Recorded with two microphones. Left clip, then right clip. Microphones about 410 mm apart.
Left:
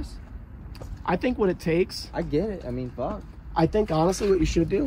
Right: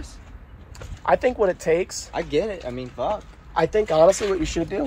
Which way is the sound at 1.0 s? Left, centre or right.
Centre.